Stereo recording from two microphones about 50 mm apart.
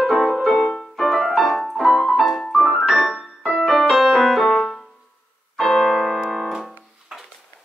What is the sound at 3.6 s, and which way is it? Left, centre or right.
Music, centre.